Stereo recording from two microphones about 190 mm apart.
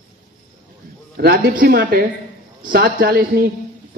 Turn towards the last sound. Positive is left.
turn(degrees=-50)  # may be behind; listen again after turning